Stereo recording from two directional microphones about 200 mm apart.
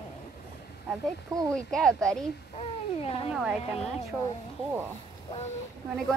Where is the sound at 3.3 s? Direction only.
5° right (ahead or behind).